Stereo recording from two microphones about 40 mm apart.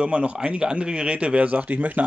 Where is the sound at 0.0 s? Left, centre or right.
Right.